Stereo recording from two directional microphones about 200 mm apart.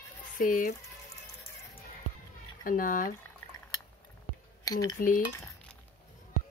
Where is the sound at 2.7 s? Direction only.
45° left (ahead or behind).